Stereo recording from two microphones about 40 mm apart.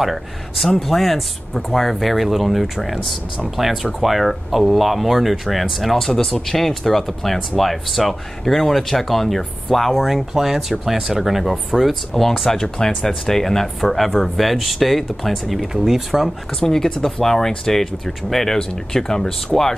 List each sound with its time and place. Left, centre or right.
0.0 s speech: centre
15.6 s speech: centre
16.5 s speech: centre